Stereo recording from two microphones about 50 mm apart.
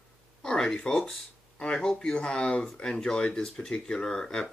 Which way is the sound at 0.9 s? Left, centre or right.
Centre.